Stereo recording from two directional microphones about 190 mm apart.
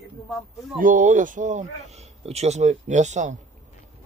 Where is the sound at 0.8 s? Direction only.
45° right (ahead or behind).